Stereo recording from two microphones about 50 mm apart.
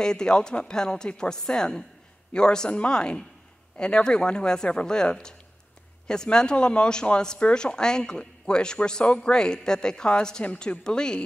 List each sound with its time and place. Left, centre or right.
0.0 s a woman's voice: centre